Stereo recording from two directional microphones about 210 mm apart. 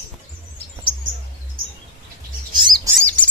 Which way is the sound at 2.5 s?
20° right (ahead or behind).